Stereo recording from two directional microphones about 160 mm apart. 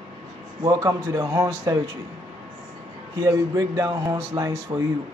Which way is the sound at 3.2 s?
20° right (ahead or behind).